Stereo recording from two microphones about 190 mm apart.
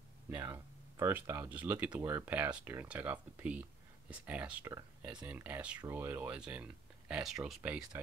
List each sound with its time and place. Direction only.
0.4 s speech: 15° right (ahead or behind)